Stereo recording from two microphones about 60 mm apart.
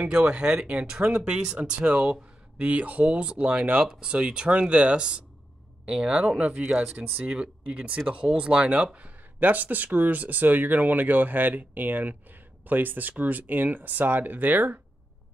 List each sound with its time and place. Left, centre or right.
0.0 s speech: centre
3.8 s speech: centre
4.1 s speech: centre